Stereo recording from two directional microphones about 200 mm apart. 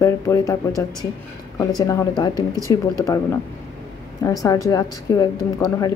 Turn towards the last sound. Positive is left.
turn(degrees=20)  # may be behind; listen again after turning